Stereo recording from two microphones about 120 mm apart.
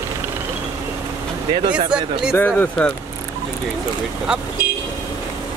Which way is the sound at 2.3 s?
15° left (ahead or behind).